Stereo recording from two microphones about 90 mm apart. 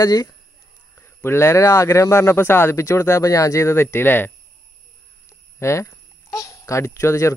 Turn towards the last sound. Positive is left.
turn(degrees=30)  # may be behind; listen again after turning